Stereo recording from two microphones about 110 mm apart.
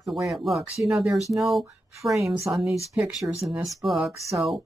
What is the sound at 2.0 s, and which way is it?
Speech, 40° right (ahead or behind).